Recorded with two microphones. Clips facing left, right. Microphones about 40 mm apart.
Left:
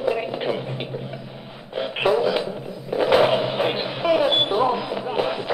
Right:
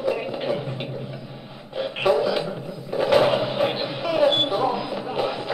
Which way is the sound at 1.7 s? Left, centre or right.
Centre.